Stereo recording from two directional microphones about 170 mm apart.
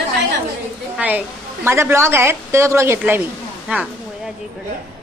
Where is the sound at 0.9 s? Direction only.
10° right (ahead or behind).